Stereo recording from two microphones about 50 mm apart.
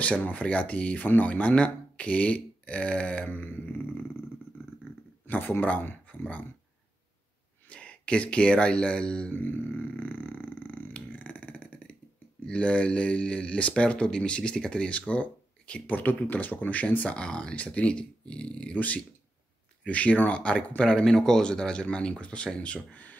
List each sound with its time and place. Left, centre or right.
0.0 s speech: left
5.2 s speech: left
7.7 s speech: left
9.3 s speech: left
10.9 s beatboxing: left
12.4 s speech: left
15.9 s speech: left